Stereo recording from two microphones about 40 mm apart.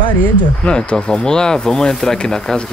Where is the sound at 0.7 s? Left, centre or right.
Left.